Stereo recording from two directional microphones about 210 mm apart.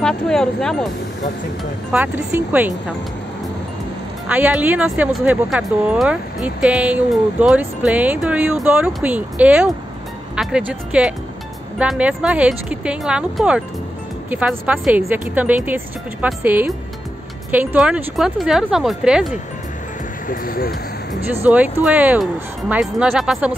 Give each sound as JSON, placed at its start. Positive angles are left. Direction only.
{"t": 0.0, "sound": "speech", "side_deg": 5}
{"t": 1.9, "sound": "speech", "side_deg": -5}
{"t": 4.3, "sound": "speech", "side_deg": -5}
{"t": 20.2, "sound": "speech", "side_deg": 45}
{"t": 21.5, "sound": "speech", "side_deg": -5}